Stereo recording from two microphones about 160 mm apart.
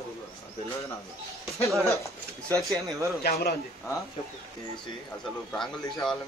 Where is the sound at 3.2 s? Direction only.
90° left.